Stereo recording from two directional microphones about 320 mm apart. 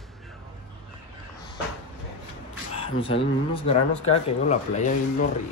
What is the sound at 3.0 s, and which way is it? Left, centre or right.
Speech, centre.